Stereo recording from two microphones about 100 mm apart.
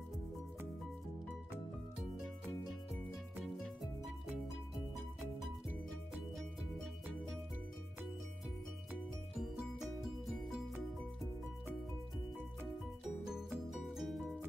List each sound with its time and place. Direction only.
13.3 s music: 5° right (ahead or behind)